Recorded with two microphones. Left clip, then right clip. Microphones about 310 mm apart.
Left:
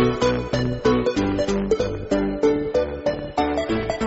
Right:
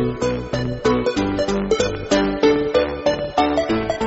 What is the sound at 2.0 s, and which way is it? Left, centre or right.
Music, right.